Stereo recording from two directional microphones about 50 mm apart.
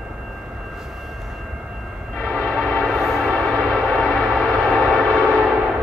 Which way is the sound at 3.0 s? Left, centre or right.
Centre.